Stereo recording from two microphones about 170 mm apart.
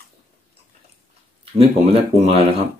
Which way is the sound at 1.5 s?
35° right (ahead or behind).